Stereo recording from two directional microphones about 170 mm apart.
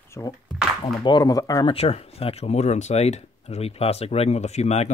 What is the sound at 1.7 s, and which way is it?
Speech, 35° left (ahead or behind).